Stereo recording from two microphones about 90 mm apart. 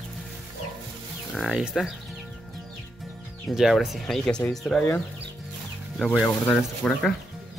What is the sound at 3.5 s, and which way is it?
Speech, 5° right (ahead or behind).